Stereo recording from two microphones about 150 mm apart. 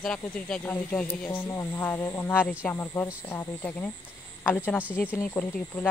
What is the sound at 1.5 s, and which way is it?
Speech, 15° left (ahead or behind).